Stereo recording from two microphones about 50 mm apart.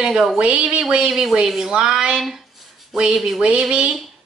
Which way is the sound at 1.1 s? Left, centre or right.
Centre.